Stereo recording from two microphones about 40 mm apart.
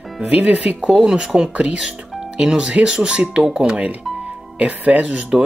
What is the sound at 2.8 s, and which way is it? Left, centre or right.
Speech, centre.